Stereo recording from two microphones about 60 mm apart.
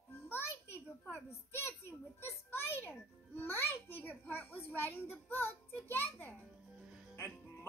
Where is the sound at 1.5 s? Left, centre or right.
Left.